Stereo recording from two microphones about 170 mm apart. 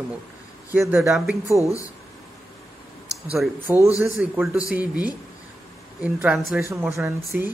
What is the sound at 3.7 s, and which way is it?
Speech, 15° right (ahead or behind).